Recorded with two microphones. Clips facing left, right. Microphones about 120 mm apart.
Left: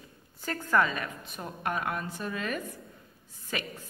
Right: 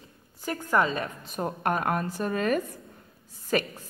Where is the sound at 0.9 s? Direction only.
35° right (ahead or behind).